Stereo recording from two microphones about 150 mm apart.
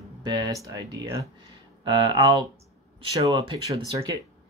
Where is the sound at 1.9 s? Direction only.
35° right (ahead or behind).